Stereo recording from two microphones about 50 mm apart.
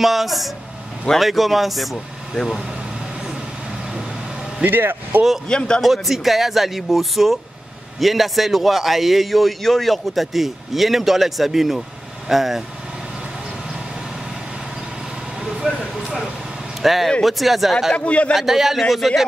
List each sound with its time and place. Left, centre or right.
0.0 s a man's voice: centre
4.6 s speech: right
5.5 s a man's voice: centre
5.8 s a man's voice: centre
15.7 s speech: right
16.8 s a man's voice: centre
17.9 s speech: left
18.3 s a man's voice: centre